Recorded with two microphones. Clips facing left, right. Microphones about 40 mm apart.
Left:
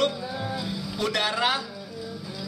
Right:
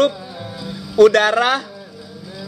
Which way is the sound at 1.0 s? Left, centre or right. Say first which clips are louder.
Right 14 dB; right.